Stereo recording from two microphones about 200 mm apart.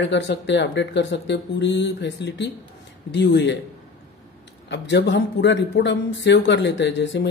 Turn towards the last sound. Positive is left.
turn(degrees=60)  # may be behind; listen again after turning